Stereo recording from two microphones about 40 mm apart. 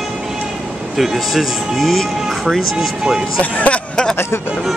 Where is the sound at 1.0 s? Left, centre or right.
Centre.